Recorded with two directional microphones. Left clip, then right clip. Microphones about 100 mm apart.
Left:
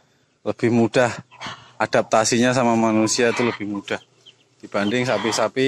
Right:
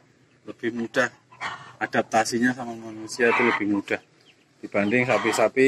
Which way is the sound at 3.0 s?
55° left (ahead or behind).